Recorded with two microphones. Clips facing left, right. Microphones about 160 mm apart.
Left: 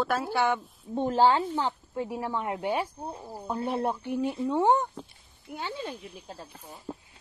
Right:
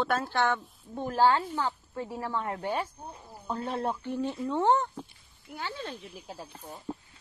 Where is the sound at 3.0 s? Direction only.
30° left (ahead or behind).